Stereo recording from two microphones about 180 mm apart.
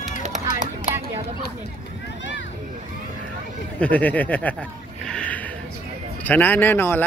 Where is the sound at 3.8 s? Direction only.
10° left (ahead or behind).